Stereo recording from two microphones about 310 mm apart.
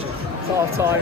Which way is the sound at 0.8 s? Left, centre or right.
Centre.